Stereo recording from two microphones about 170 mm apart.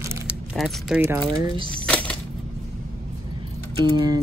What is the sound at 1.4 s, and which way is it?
Speech, 30° right (ahead or behind).